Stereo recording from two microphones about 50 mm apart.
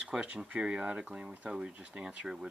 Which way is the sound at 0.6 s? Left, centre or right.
Right.